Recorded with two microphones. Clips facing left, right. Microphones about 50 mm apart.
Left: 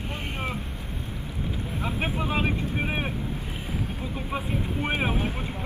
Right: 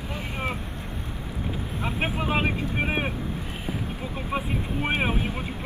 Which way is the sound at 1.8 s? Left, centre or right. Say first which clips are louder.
Right 1 dB; right.